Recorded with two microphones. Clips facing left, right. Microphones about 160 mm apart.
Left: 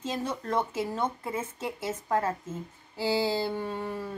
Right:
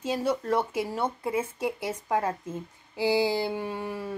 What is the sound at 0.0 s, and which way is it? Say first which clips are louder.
A woman's voice: right 5 dB; 10° right (ahead or behind).